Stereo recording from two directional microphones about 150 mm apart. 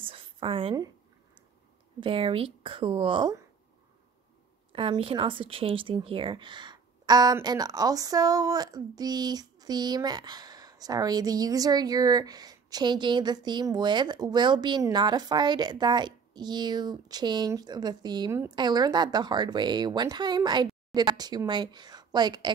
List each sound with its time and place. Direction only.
0.0 s a sound: 35° right (ahead or behind)
2.0 s speech: 35° right (ahead or behind)
4.7 s speech: 35° right (ahead or behind)